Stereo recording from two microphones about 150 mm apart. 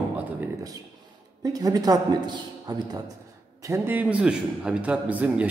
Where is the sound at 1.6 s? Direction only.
25° right (ahead or behind).